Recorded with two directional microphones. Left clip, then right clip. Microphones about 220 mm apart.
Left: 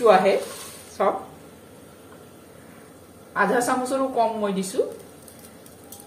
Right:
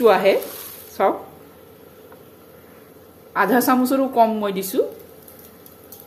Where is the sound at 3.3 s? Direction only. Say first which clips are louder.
Right 4 dB; 50° right (ahead or behind).